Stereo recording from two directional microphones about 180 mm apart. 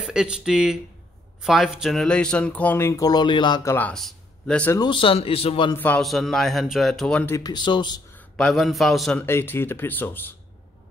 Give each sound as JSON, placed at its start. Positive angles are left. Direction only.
{"t": 0.0, "sound": "speech", "side_deg": -5}
{"t": 3.7, "sound": "speech", "side_deg": 5}
{"t": 4.7, "sound": "a man's voice", "side_deg": 25}
{"t": 5.7, "sound": "a man's voice", "side_deg": 10}
{"t": 8.2, "sound": "a man's voice", "side_deg": 5}
{"t": 9.2, "sound": "speech", "side_deg": 15}